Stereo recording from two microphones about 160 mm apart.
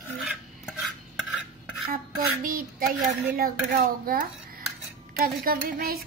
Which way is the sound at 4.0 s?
65° right (ahead or behind).